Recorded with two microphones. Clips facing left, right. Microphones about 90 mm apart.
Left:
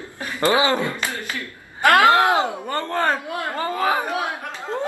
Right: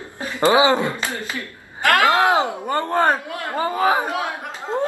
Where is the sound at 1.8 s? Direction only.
20° left (ahead or behind).